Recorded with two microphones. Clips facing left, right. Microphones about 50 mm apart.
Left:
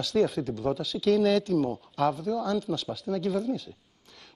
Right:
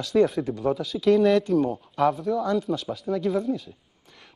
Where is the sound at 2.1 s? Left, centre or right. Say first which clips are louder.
Right 4 dB; centre.